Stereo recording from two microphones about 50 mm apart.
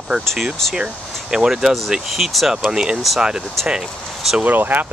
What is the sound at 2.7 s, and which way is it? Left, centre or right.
Speech, centre.